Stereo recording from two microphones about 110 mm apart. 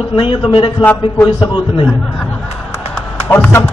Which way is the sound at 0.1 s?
50° left (ahead or behind).